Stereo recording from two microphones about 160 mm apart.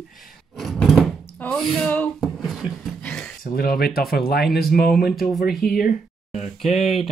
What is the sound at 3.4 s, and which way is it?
Speech, 65° left (ahead or behind).